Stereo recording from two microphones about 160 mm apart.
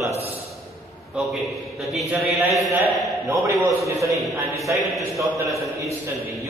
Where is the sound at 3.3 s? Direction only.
20° right (ahead or behind).